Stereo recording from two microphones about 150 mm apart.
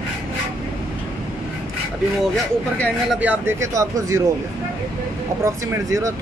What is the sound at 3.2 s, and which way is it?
Speech, 15° right (ahead or behind).